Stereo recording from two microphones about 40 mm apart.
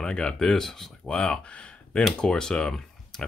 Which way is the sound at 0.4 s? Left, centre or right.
Centre.